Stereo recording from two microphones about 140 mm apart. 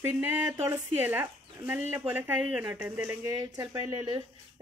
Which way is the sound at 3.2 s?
25° right (ahead or behind).